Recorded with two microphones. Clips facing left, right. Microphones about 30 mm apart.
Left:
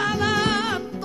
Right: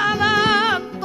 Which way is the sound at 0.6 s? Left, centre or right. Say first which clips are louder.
Right 6 dB; right.